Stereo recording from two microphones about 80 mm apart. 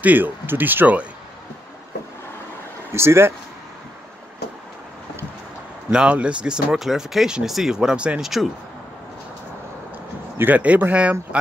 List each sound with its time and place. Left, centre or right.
0.0 s speech: right
2.9 s speech: right
5.9 s speech: centre
10.3 s speech: right